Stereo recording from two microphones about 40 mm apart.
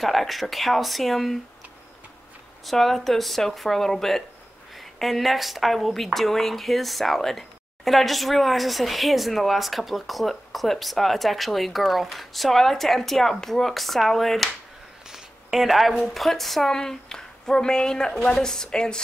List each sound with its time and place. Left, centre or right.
0.0 s speech: centre
2.6 s speech: centre
15.0 s a sound: centre
16.1 s speech: centre
16.7 s a woman's voice: centre